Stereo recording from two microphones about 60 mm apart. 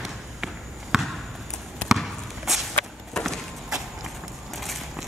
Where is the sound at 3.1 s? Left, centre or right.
Centre.